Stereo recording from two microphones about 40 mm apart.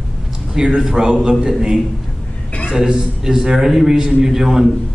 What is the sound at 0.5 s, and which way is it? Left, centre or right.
A man's voice, centre.